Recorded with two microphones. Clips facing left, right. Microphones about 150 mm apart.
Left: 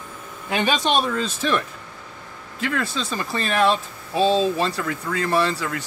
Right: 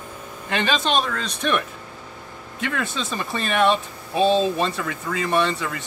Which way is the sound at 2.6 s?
Centre (ahead or behind).